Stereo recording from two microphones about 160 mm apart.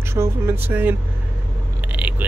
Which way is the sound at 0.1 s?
15° right (ahead or behind).